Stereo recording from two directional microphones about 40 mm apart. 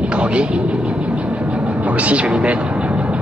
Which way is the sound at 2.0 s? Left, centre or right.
Right.